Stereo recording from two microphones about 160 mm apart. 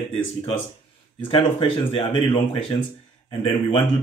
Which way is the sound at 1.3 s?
35° left (ahead or behind).